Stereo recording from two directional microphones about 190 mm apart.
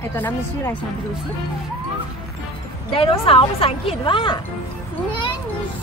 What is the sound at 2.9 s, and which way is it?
A woman's voice, 30° left (ahead or behind).